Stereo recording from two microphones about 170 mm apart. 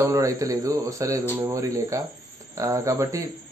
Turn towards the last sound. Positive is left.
turn(degrees=-20)  # may be behind; listen again after turning